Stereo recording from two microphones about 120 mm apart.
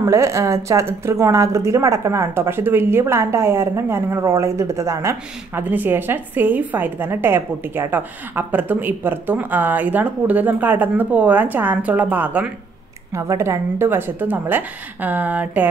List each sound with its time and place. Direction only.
0.0 s a woman's voice: 25° right (ahead or behind)
13.1 s a woman's voice: 25° right (ahead or behind)